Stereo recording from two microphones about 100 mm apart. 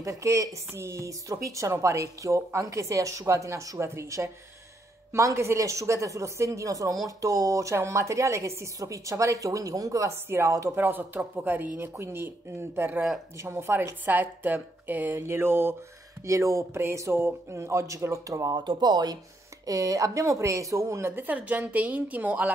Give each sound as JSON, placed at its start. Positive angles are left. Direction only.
{"t": 0.0, "sound": "speech", "side_deg": -30}
{"t": 10.8, "sound": "speech", "side_deg": -20}
{"t": 18.6, "sound": "speech", "side_deg": -45}